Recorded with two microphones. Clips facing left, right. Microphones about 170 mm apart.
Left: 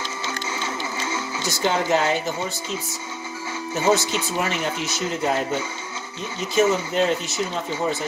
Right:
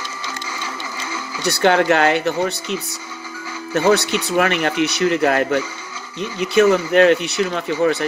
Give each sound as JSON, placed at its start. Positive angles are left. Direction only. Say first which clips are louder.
{"t": 1.4, "sound": "speech", "louder": "right 8 dB", "side_deg": -70}